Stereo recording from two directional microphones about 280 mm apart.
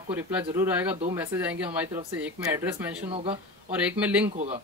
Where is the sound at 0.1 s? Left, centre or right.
Centre.